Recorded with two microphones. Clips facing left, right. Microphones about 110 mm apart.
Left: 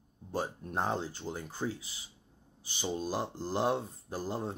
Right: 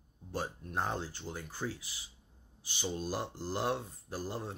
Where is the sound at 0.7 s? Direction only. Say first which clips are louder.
Left 3 dB; 20° left (ahead or behind).